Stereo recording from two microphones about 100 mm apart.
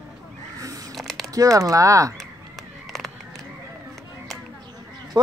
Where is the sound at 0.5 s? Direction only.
35° right (ahead or behind).